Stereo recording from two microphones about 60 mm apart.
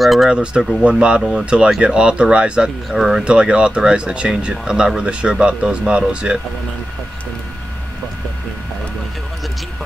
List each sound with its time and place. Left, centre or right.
0.0 s speech: centre
0.3 s speech: centre